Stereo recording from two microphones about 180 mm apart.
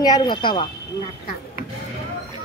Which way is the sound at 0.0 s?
25° left (ahead or behind).